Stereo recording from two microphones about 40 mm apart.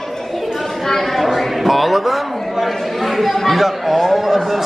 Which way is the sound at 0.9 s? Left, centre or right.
Centre.